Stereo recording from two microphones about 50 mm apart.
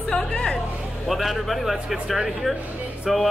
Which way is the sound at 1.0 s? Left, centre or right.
Centre.